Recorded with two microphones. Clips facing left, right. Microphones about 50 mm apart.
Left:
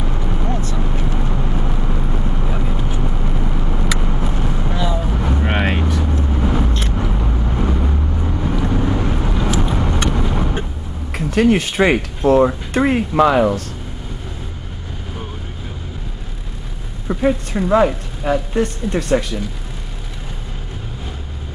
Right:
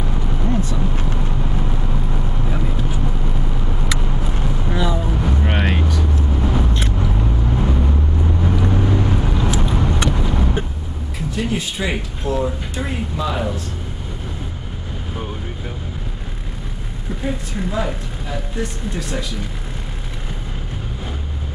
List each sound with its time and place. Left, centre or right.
0.1 s vehicle: centre
4.6 s vehicle: centre
5.3 s vehicle: centre
11.2 s speech: left
17.1 s speech: left